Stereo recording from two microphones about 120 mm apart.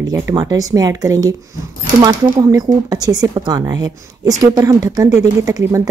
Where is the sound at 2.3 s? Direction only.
30° right (ahead or behind).